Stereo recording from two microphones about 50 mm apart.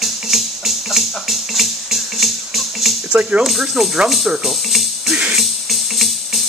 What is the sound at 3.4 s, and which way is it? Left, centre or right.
Speech, centre.